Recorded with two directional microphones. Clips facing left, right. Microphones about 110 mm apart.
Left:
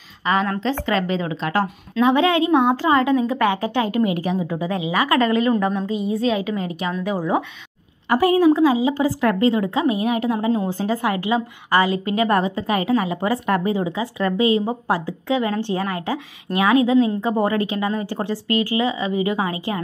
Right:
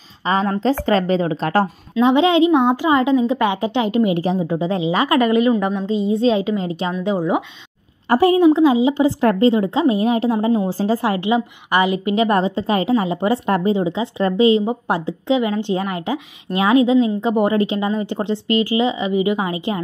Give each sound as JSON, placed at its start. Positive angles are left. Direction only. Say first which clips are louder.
{"t": 0.2, "sound": "speech", "louder": "right 2 dB", "side_deg": -30}
{"t": 2.0, "sound": "a woman's voice", "louder": "right 3 dB", "side_deg": -25}
{"t": 5.9, "sound": "a woman's voice", "louder": "right 4 dB", "side_deg": -25}